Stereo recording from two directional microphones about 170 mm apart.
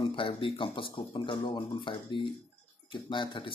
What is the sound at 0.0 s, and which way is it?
Speech, 30° left (ahead or behind).